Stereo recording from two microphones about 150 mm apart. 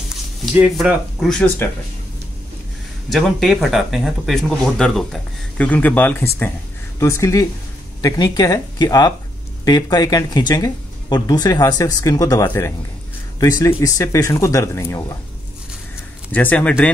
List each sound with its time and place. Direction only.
0.6 s speech: 5° right (ahead or behind)
3.1 s speech: centre (ahead or behind); by 15.1 s 20° left (ahead or behind)
16.3 s speech: 10° left (ahead or behind)